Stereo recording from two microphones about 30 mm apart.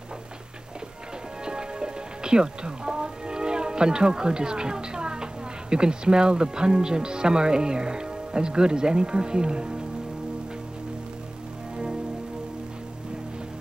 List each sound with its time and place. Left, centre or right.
1.4 s speech: right